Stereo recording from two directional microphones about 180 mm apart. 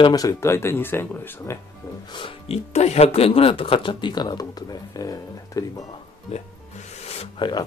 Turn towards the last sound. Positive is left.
turn(degrees=35)  # may be behind; listen again after turning